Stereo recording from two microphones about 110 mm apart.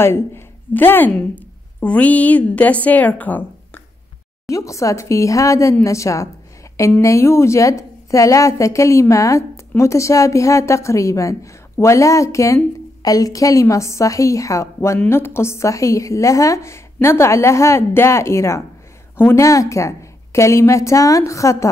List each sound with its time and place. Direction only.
0.0 s a woman's voice: 20° left (ahead or behind)
4.5 s a woman's voice: 30° left (ahead or behind)